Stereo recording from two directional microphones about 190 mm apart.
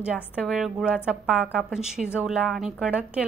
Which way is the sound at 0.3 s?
Centre (ahead or behind).